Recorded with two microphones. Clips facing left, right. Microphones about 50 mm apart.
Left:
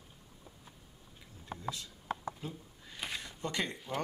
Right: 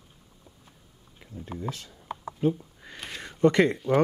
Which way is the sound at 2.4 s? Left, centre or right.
Right.